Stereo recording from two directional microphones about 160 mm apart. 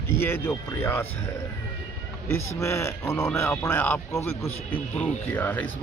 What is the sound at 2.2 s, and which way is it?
Speech, 15° left (ahead or behind).